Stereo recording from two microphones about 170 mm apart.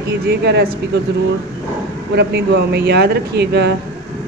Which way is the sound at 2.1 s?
75° right (ahead or behind).